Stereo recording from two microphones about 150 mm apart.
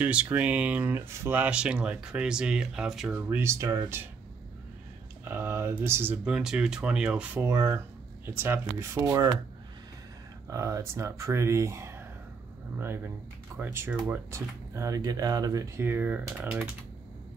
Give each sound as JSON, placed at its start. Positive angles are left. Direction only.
{"t": 0.0, "sound": "speech", "side_deg": -10}
{"t": 3.3, "sound": "speech", "side_deg": -15}
{"t": 5.2, "sound": "speech", "side_deg": -15}
{"t": 10.5, "sound": "speech", "side_deg": -20}